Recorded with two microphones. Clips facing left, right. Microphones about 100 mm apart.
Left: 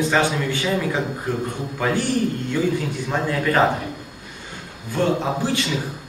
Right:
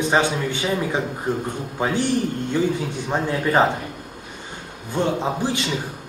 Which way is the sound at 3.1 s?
25° right (ahead or behind).